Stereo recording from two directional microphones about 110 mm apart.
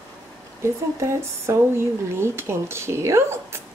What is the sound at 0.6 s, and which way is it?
Speech, 25° right (ahead or behind).